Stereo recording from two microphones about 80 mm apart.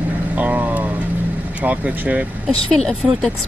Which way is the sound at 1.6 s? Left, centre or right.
Centre.